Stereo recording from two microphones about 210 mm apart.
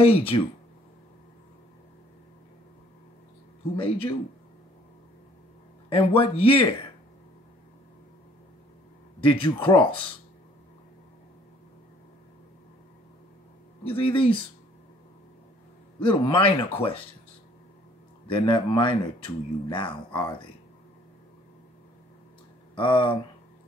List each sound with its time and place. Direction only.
0.0 s speech: 25° left (ahead or behind)
3.7 s speech: 25° left (ahead or behind)
5.9 s speech: 25° left (ahead or behind)
9.2 s speech: 25° left (ahead or behind)
13.8 s speech: 25° left (ahead or behind)
16.0 s speech: 25° left (ahead or behind)
18.3 s speech: 25° left (ahead or behind)
22.8 s speech: 25° left (ahead or behind)